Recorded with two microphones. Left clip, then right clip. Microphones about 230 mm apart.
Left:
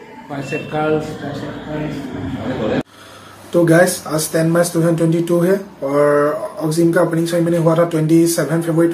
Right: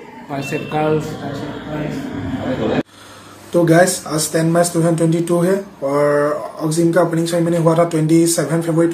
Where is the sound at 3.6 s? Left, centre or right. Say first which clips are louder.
Even; centre.